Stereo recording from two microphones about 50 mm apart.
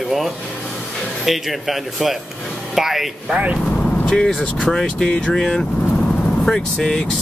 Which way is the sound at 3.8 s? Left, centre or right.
Left.